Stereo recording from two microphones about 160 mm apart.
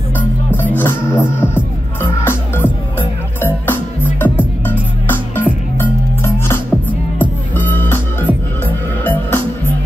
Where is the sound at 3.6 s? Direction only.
10° left (ahead or behind).